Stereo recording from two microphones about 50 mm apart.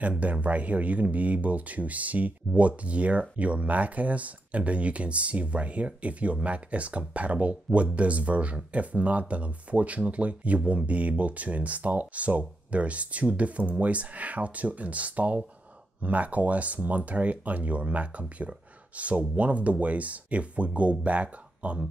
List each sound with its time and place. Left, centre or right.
0.0 s speech: right